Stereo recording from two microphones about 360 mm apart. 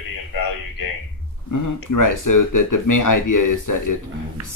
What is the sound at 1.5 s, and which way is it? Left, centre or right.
Speech, left.